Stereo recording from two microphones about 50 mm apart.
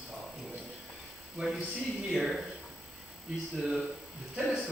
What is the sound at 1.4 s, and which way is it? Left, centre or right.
Speech, centre.